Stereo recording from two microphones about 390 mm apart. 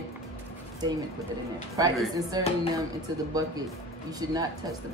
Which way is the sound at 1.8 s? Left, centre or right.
Centre.